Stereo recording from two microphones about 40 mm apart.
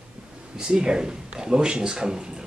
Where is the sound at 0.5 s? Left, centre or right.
Centre.